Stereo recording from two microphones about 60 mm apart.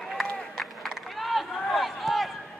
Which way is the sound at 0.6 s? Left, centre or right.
Centre.